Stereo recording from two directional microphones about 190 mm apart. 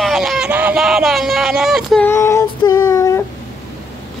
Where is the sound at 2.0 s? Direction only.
15° left (ahead or behind).